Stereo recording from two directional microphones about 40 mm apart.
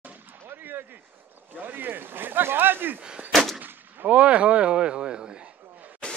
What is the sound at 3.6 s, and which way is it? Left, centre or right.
Artillery fire, right.